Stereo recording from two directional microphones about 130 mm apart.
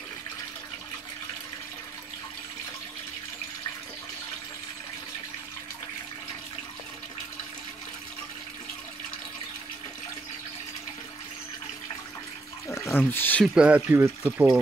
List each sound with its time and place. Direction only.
12.6 s bathtub: 20° left (ahead or behind)
13.0 s speech: 15° left (ahead or behind)
13.6 s speech: 10° right (ahead or behind)